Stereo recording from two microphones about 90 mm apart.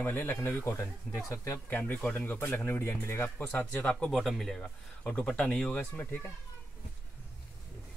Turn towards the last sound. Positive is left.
turn(degrees=20)  # may be behind; listen again after turning